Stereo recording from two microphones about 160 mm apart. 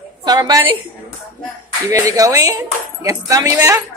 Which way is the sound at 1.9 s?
20° right (ahead or behind).